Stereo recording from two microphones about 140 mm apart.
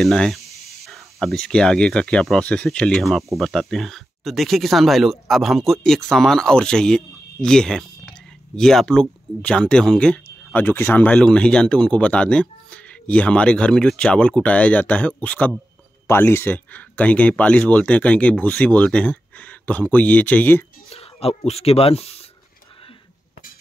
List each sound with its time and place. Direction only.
0.0 s speech: 5° left (ahead or behind)
20.9 s speech: 45° left (ahead or behind)